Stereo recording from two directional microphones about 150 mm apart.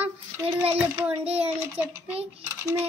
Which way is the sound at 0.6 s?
10° right (ahead or behind).